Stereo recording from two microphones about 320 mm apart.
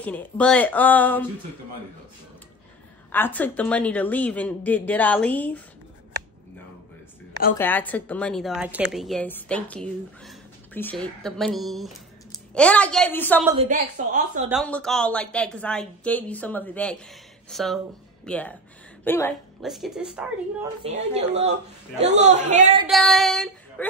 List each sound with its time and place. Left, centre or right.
0.0 s a woman's voice: centre
3.1 s a woman's voice: centre
7.5 s a woman's voice: centre
13.5 s a woman's voice: right
14.6 s a woman's voice: centre
20.8 s a woman's voice: centre
22.8 s a woman's voice: centre